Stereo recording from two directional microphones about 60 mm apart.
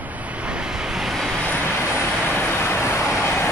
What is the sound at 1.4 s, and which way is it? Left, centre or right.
Train, left.